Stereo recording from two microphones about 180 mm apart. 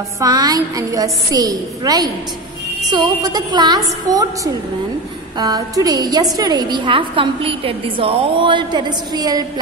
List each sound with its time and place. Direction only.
0.2 s a woman's voice: 20° right (ahead or behind)
5.4 s a woman's voice: 20° right (ahead or behind)